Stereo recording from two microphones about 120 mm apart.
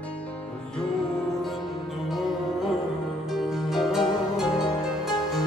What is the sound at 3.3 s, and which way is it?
Music, centre (ahead or behind).